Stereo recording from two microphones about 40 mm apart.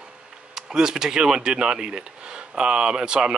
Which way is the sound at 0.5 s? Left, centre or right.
Centre.